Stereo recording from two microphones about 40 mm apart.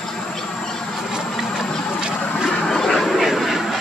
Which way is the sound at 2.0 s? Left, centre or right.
Centre.